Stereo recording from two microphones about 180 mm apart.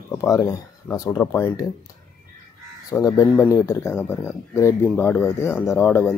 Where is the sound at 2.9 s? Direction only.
15° left (ahead or behind).